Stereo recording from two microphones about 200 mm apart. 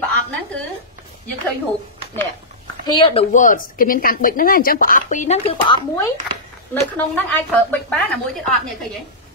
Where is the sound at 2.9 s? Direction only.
25° left (ahead or behind).